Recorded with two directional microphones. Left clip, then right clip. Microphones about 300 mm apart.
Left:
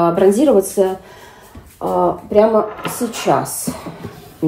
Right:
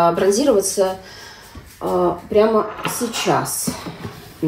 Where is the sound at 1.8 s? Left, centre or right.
Centre.